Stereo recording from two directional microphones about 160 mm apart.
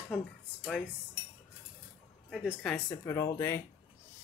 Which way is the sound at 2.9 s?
15° left (ahead or behind).